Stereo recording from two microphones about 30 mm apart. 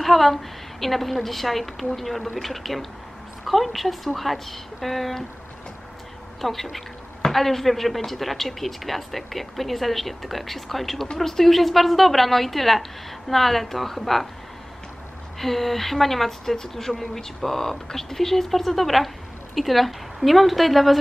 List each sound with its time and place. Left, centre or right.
0.0 s a woman's voice: centre
6.4 s a woman's voice: centre
15.3 s a woman's voice: centre